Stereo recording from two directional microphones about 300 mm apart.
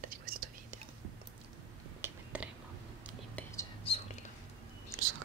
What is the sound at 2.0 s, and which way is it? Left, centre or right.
Whispering, centre.